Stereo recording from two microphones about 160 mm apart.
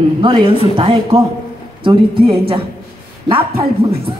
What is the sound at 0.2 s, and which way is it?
Speech, 30° right (ahead or behind).